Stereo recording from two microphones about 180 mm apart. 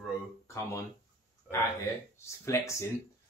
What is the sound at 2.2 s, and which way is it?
Speech, 15° left (ahead or behind).